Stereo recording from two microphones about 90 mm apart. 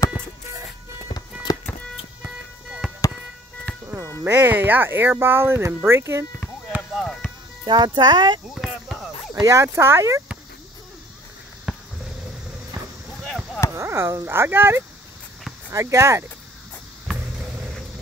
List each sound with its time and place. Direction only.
2.2 s music: 10° right (ahead or behind)
3.7 s music: 15° left (ahead or behind)
4.2 s speech: 20° right (ahead or behind)
6.9 s chop: 5° left (ahead or behind)
7.6 s speech: 55° right (ahead or behind)
8.5 s a sound: centre (ahead or behind)
9.4 s speech: 35° right (ahead or behind)
11.7 s a sound: 5° right (ahead or behind)
13.7 s speech: 30° right (ahead or behind)